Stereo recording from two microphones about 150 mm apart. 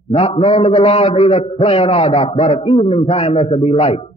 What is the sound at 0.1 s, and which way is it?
A man's voice, 40° left (ahead or behind).